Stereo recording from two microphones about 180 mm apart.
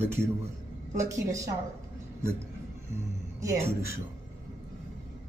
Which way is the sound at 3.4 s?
15° right (ahead or behind).